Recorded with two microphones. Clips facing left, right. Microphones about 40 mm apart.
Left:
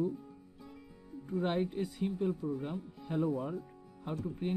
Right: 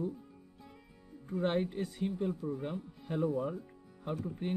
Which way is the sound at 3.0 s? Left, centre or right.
Centre.